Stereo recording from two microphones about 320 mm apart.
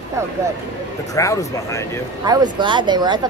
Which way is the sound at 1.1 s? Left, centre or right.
Centre.